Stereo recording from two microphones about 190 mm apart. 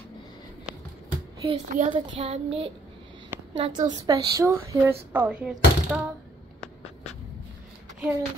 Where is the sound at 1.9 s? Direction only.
30° right (ahead or behind).